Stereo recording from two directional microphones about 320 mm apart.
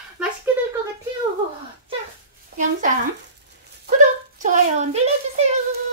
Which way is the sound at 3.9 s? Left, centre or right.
Right.